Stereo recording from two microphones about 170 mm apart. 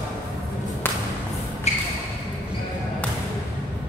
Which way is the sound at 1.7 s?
40° left (ahead or behind).